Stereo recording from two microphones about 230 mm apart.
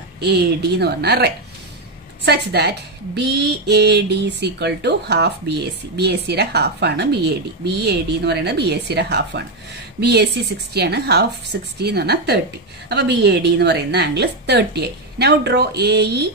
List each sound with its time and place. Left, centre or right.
0.2 s speech: right